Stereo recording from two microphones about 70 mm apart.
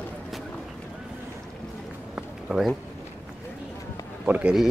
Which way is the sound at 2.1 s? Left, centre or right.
Centre.